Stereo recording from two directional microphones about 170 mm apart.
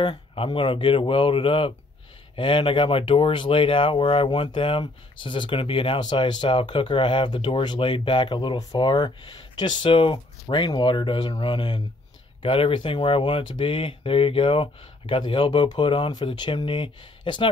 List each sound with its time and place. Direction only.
0.0 s speech: 30° left (ahead or behind)